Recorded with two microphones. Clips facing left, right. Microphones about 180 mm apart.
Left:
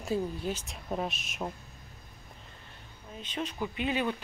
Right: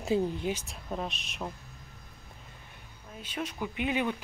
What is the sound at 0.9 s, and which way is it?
Speech, 5° left (ahead or behind).